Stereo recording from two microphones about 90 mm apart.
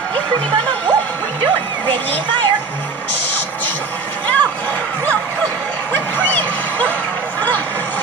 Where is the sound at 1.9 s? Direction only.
20° left (ahead or behind).